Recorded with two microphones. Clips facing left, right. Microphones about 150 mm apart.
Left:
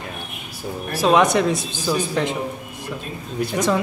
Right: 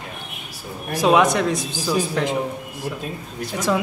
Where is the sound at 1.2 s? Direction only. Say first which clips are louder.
Left 1 dB; centre (ahead or behind).